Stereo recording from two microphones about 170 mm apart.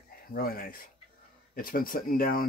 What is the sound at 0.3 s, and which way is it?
Speech, 60° left (ahead or behind).